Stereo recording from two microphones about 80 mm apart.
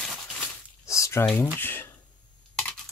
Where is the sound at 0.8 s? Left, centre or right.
Left.